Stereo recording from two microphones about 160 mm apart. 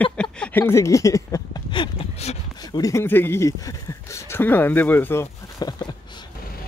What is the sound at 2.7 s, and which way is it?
Speech, 20° left (ahead or behind).